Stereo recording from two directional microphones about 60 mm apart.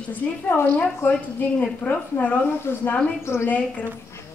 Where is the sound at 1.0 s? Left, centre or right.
Left.